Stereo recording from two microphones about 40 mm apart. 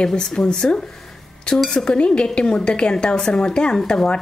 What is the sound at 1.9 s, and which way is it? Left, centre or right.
A woman's voice, left.